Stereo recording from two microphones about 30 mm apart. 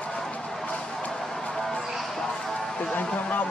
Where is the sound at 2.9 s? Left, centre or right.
Left.